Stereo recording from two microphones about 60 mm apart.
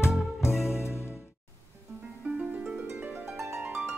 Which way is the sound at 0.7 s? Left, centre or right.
Left.